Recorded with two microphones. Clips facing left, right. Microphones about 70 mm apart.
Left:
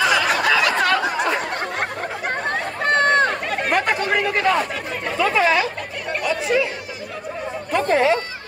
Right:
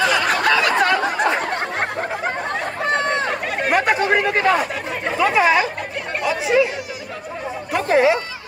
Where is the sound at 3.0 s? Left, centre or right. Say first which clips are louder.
Left 5 dB; left.